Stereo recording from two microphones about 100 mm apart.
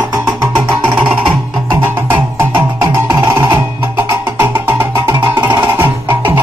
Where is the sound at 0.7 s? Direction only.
55° right (ahead or behind).